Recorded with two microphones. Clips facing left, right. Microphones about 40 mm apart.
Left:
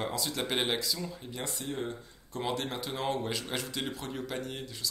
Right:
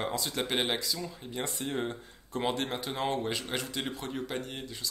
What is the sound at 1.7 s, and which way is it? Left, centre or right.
Speech, right.